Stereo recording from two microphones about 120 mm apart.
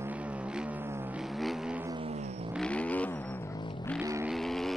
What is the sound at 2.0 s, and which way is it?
Vehicle, 55° right (ahead or behind).